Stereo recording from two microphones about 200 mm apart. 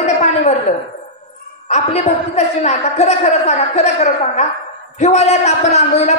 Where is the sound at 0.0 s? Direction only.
35° left (ahead or behind).